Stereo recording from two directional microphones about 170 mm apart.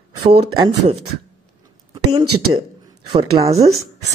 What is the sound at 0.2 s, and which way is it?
Speech, 35° right (ahead or behind).